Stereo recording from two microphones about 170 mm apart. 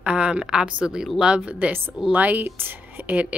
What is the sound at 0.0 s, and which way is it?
A woman's voice, 5° right (ahead or behind).